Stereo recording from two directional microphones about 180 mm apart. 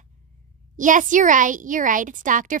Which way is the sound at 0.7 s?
45° right (ahead or behind).